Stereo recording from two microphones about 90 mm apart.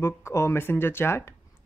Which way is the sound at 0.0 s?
30° left (ahead or behind).